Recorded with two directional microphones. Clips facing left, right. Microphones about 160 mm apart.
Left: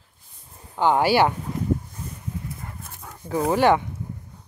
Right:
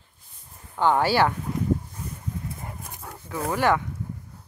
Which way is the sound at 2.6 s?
20° right (ahead or behind).